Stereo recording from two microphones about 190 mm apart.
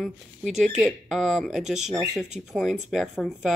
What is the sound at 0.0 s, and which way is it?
Speech, centre (ahead or behind).